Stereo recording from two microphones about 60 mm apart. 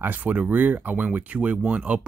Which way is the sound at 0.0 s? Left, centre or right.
Right.